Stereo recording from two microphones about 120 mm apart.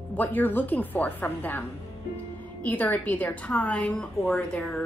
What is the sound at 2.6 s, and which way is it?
A woman's voice, 15° left (ahead or behind).